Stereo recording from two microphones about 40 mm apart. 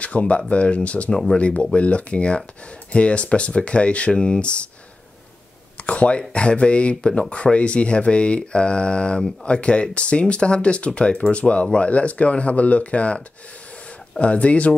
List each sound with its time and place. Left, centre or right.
0.0 s speech: left
1.1 s speech: centre
1.4 s speech: left
5.9 s speech: left
14.2 s speech: left